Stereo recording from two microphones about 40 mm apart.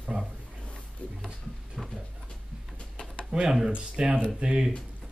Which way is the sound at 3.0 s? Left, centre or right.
Left.